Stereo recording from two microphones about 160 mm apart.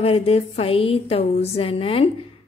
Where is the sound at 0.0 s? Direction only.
40° left (ahead or behind).